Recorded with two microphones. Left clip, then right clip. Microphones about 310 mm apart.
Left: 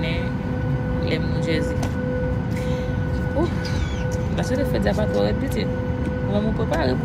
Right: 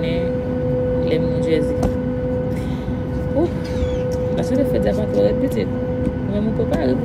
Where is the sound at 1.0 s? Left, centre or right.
Centre.